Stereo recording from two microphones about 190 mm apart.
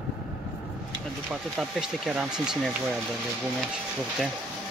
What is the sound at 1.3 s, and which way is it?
Speech, centre (ahead or behind).